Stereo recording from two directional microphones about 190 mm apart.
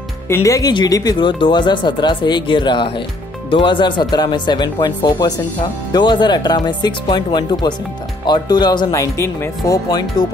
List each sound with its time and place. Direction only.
0.3 s speech: 15° left (ahead or behind)